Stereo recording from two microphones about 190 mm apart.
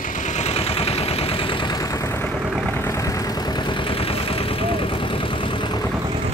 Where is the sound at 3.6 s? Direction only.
25° left (ahead or behind).